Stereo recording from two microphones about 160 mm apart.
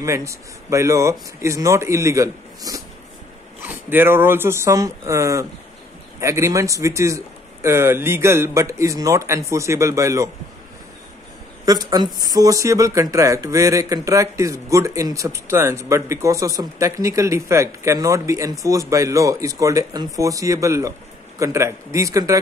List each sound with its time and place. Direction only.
0.0 s speech: 20° right (ahead or behind)
11.6 s speech: 25° right (ahead or behind)